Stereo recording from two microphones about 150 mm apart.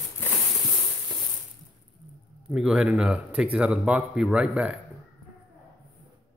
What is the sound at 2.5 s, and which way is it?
Speech, 5° right (ahead or behind).